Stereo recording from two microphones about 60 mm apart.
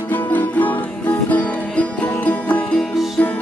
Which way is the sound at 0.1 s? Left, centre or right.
Left.